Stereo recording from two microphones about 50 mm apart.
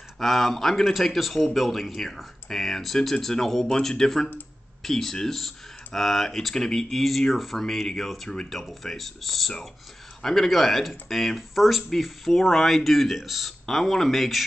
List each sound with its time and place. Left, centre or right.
0.2 s speech: centre
8.3 s speech: centre
8.5 s speech: centre